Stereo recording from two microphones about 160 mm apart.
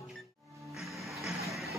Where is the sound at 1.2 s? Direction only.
Centre (ahead or behind).